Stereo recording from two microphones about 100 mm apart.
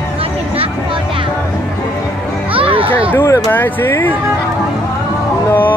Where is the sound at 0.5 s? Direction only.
65° right (ahead or behind).